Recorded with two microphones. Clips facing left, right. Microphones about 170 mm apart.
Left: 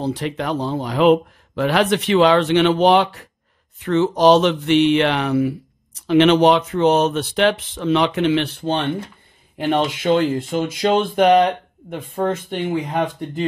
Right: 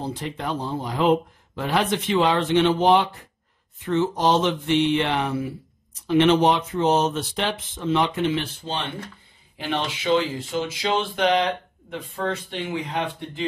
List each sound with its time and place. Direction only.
0.0 s speech: 75° left (ahead or behind)
8.4 s speech: 65° left (ahead or behind); by 13.5 s 45° left (ahead or behind)